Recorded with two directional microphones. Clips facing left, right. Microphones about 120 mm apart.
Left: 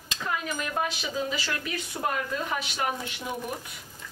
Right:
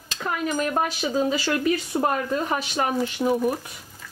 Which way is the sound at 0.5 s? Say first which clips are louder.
Right 6 dB; 45° right (ahead or behind).